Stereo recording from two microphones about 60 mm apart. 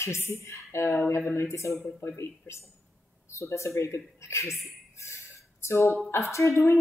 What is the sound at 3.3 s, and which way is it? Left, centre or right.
A woman's voice, left.